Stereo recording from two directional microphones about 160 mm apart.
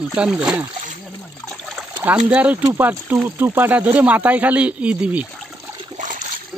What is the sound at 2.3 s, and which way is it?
Speech, 10° right (ahead or behind).